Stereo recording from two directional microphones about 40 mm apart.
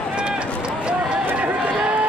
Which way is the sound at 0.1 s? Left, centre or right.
Right.